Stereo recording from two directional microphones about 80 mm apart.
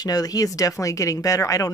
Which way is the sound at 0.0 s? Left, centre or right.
Left.